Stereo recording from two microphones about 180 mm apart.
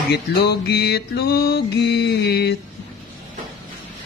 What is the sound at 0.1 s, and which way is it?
Music, 65° left (ahead or behind).